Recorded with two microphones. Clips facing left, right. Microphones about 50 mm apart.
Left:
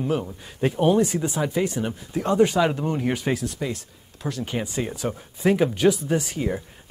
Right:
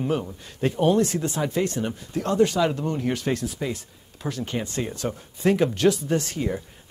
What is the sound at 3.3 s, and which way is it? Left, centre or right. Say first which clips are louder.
Speech: even; centre.